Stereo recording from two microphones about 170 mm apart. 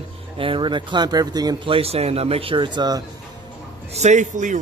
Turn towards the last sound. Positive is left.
turn(degrees=-45)  # may be behind; listen again after turning